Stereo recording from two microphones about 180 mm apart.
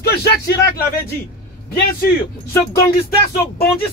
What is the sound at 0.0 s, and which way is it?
Speech, 60° left (ahead or behind).